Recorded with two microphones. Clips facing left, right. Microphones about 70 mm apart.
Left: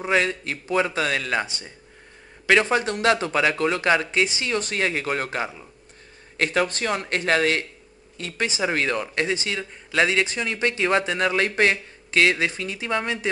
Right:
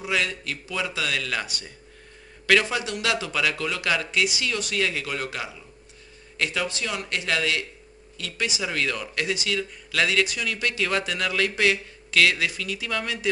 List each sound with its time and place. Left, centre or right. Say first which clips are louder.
0.0 s speech: left 5 dB; left